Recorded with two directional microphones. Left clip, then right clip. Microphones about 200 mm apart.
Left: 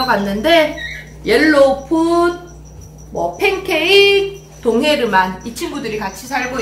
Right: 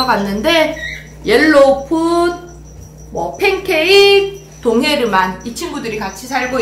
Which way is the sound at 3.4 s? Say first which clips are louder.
Right 3 dB; 5° right (ahead or behind).